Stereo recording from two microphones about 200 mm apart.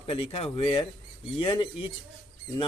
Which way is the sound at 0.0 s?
30° left (ahead or behind).